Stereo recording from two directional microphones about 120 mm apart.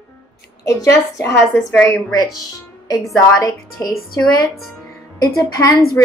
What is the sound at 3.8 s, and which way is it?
Speech, 30° left (ahead or behind).